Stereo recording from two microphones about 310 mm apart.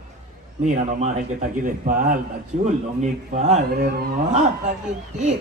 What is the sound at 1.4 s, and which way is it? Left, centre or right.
Speech, right.